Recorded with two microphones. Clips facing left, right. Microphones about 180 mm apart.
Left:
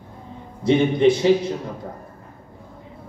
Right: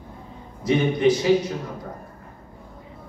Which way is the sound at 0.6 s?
30° left (ahead or behind).